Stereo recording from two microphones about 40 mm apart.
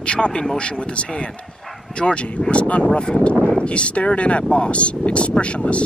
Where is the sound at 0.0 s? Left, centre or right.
Left.